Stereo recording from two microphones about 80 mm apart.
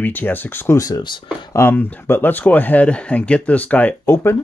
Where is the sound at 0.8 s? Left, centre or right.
Left.